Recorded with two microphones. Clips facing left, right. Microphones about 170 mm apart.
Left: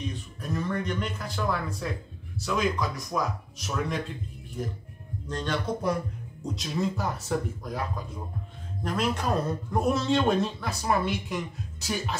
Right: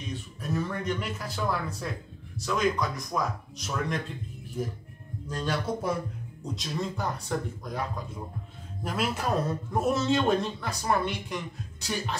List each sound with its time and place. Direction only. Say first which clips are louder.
0.4 s a man's voice: left 1 dB; 5° right (ahead or behind)
5.3 s a man's voice: even; 5° right (ahead or behind)
8.8 s a man's voice: left 2 dB; 5° right (ahead or behind)